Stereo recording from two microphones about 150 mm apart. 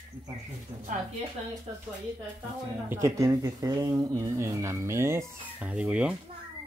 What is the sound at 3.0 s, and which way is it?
Speech, 20° right (ahead or behind).